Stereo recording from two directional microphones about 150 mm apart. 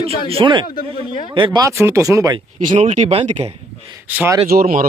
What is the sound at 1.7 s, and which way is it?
Speech, 20° right (ahead or behind).